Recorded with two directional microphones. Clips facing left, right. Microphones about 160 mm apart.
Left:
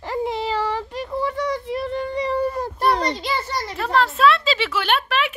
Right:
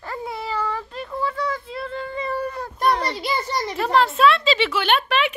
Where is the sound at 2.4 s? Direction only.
35° left (ahead or behind).